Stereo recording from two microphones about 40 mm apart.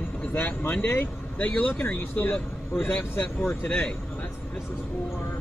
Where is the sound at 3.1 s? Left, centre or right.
Left.